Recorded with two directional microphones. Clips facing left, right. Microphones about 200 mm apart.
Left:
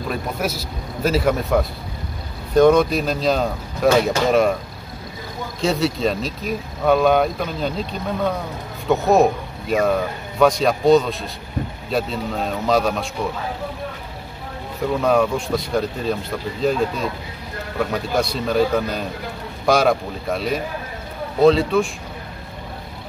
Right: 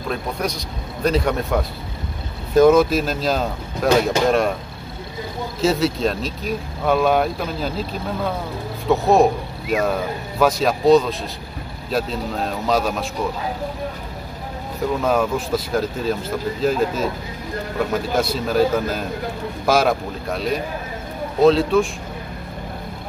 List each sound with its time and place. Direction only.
0.1 s speech: 5° left (ahead or behind)
5.6 s speech: centre (ahead or behind)
15.0 s speech: centre (ahead or behind)